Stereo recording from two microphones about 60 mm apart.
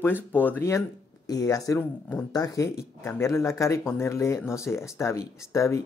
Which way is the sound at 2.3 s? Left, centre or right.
Left.